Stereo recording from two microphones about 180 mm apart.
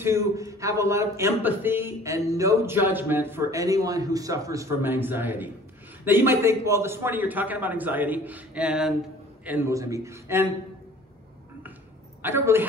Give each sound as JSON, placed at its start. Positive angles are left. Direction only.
{"t": 0.0, "sound": "speech", "side_deg": -15}
{"t": 12.2, "sound": "a woman's voice", "side_deg": -10}